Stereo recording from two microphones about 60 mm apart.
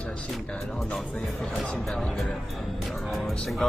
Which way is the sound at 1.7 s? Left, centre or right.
Centre.